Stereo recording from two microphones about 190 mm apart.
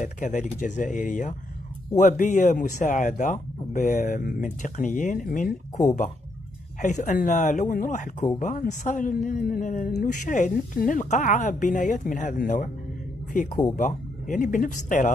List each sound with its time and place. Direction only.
0.0 s speech: 40° left (ahead or behind)
13.7 s speech: 45° left (ahead or behind)